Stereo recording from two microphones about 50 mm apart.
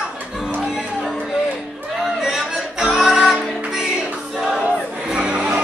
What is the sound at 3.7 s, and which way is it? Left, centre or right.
Music, centre.